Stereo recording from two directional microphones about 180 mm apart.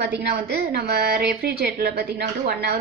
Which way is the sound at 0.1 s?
65° right (ahead or behind).